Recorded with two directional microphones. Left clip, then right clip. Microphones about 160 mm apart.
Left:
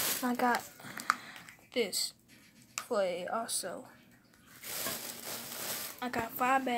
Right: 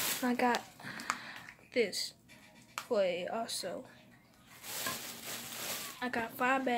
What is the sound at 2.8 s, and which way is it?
Speech, 10° right (ahead or behind).